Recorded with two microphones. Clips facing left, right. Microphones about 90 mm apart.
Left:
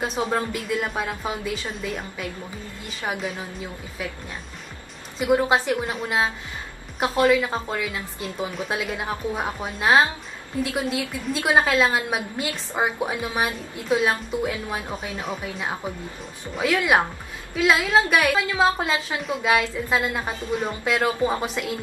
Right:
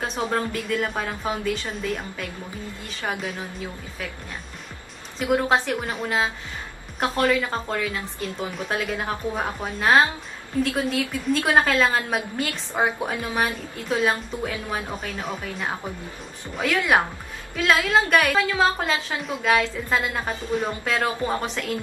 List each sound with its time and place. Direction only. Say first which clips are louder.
0.0 s a woman's voice: left 1 dB; 5° left (ahead or behind)
5.8 s a woman's voice: left 1 dB; 5° left (ahead or behind)